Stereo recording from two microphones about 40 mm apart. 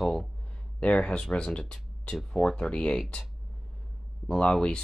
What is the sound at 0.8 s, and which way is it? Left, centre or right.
Speech, left.